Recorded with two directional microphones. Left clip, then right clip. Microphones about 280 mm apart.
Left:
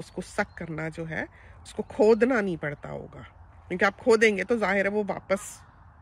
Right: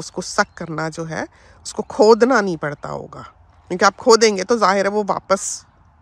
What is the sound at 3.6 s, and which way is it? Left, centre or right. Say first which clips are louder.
Speech: right 9 dB; right.